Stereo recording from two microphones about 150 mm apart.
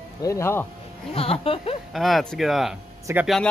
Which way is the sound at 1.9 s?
Centre (ahead or behind).